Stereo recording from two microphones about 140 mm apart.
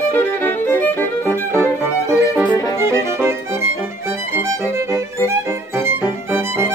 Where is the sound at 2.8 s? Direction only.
20° right (ahead or behind).